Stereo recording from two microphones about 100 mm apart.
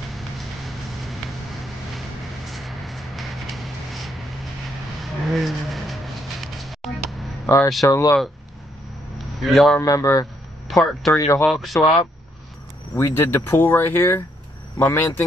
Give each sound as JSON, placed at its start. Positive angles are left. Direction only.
{"t": 2.5, "sound": "a sound", "side_deg": 0}
{"t": 5.0, "sound": "vehicle", "side_deg": 0}
{"t": 6.4, "sound": "music", "side_deg": 0}
{"t": 7.4, "sound": "speech", "side_deg": 25}
{"t": 9.4, "sound": "a man's voice", "side_deg": 0}
{"t": 9.8, "sound": "speech", "side_deg": 30}
{"t": 10.7, "sound": "speech", "side_deg": 0}
{"t": 11.1, "sound": "speech", "side_deg": 35}
{"t": 11.4, "sound": "a man's voice", "side_deg": 0}
{"t": 12.9, "sound": "speech", "side_deg": 25}